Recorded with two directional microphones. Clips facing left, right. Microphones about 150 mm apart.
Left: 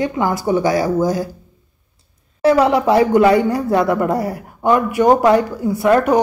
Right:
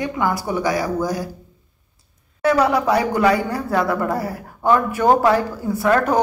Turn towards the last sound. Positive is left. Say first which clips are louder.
# left 4 dB
turn(degrees=15)  # may be behind; listen again after turning